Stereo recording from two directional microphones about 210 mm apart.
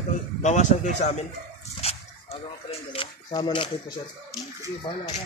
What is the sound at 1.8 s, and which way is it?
Dog, 30° left (ahead or behind).